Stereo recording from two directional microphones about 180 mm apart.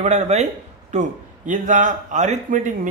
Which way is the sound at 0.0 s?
40° right (ahead or behind).